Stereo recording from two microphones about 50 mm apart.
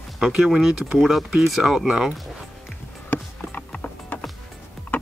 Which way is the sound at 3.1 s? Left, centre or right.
Left.